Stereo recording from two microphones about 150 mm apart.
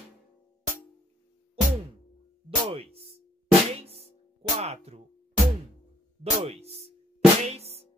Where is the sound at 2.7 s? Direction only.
40° right (ahead or behind).